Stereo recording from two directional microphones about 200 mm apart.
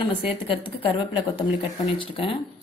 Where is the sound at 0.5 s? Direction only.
25° left (ahead or behind).